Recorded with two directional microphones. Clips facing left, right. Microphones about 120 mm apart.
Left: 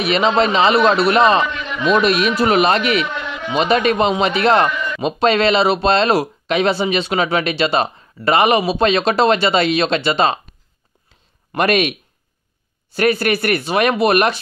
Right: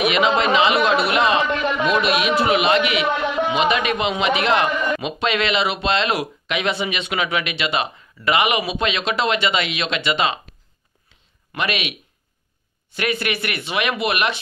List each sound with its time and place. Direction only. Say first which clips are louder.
0.0 s speech: left 2 dB; 35° left (ahead or behind)
11.5 s speech: left 9 dB; 45° left (ahead or behind)
12.9 s speech: left 7 dB; 40° left (ahead or behind)